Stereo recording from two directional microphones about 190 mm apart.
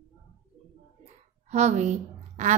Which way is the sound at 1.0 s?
35° right (ahead or behind).